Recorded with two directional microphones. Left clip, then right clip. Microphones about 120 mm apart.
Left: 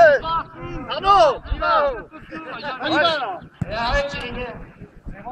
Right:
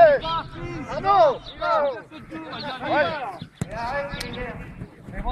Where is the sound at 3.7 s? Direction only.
10° left (ahead or behind).